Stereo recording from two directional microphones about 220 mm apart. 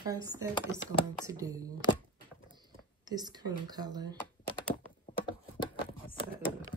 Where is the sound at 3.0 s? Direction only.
20° right (ahead or behind).